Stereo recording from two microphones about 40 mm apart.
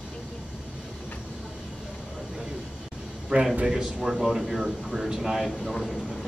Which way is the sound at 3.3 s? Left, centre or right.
Right.